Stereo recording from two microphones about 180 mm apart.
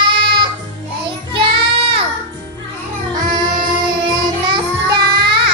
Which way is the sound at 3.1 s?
25° right (ahead or behind).